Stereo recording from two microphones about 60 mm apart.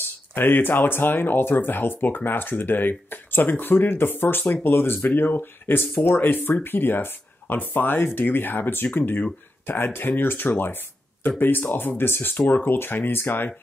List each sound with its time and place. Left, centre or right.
0.3 s speech: left